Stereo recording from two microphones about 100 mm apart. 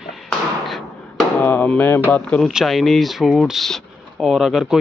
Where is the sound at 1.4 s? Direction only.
15° left (ahead or behind).